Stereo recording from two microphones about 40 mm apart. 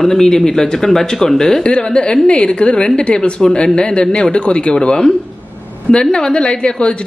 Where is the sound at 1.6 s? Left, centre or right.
Left.